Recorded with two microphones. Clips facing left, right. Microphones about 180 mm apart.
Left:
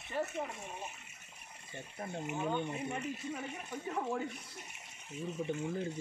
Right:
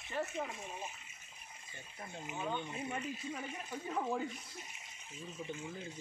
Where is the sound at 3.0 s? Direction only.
65° left (ahead or behind).